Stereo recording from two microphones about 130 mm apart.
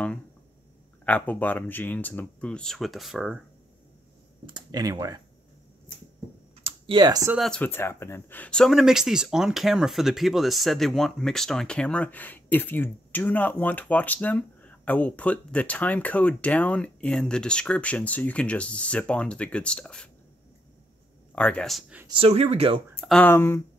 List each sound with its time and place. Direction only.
1.0 s speech: 10° left (ahead or behind)
4.5 s speech: 35° right (ahead or behind)
6.6 s computer keyboard: 35° right (ahead or behind)
7.3 s speech: centre (ahead or behind)
7.6 s speech: 15° left (ahead or behind)
21.4 s speech: 5° left (ahead or behind)
22.0 s speech: 45° right (ahead or behind)
23.2 s speech: 20° left (ahead or behind)